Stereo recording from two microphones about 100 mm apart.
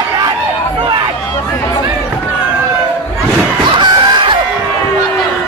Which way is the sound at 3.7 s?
50° right (ahead or behind).